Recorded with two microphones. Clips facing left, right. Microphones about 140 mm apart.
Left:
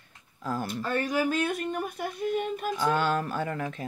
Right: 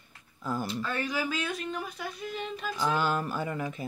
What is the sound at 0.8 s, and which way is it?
Speech, 45° left (ahead or behind).